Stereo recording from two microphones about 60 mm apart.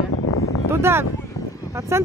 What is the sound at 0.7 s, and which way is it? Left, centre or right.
Speech, right.